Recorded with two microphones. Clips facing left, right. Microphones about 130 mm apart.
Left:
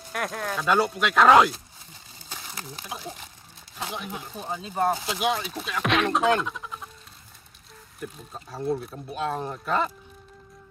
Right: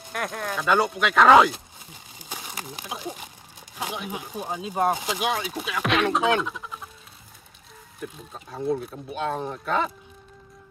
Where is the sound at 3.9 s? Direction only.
5° right (ahead or behind).